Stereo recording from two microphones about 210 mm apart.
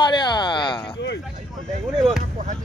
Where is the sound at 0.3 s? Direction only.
20° left (ahead or behind).